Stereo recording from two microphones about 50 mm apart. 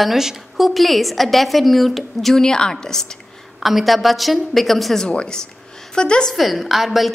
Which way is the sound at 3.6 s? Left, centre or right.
Centre.